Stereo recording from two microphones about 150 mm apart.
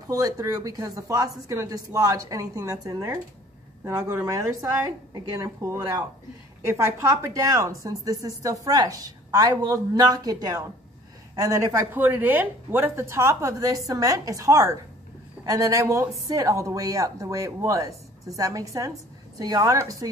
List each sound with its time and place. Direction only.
0.1 s a woman's voice: 25° right (ahead or behind)